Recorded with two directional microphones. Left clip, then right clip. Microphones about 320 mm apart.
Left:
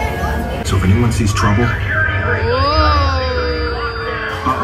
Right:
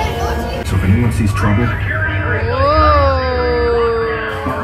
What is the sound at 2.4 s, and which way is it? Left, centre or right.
Cat, centre.